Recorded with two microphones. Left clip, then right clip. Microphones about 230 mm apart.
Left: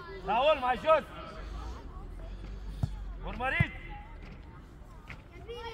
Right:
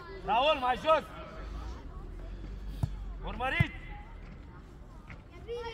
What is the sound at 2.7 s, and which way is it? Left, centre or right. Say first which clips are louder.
Basketball bounce: even; right.